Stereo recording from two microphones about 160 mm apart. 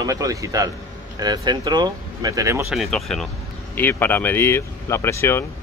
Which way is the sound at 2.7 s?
Centre (ahead or behind).